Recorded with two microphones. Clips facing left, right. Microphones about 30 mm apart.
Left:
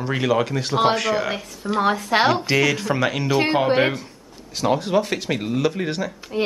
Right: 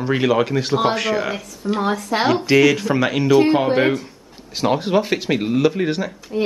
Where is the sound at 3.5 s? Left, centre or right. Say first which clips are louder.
Right 2 dB; centre.